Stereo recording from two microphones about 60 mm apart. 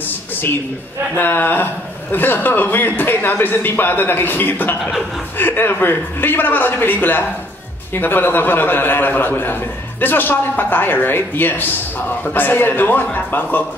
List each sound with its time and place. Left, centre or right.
1.1 s a man's voice: left